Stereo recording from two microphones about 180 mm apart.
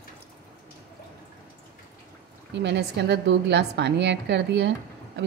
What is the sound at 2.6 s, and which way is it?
A woman's voice, 70° right (ahead or behind).